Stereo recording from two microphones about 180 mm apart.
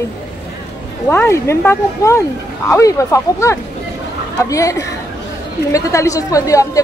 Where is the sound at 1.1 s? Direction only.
15° left (ahead or behind).